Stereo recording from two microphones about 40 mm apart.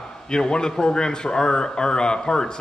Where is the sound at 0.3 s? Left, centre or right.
Centre.